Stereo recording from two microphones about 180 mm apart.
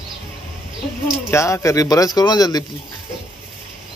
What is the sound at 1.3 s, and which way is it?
Speech, 15° left (ahead or behind).